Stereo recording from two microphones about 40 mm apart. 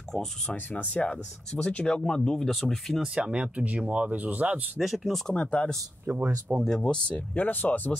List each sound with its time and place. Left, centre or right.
0.1 s speech: centre
0.7 s speech: left
0.9 s speech: left
2.3 s speech: centre
3.2 s speech: right
4.7 s speech: centre
5.3 s speech: left
6.0 s speech: right
6.7 s speech: left
7.1 s speech: left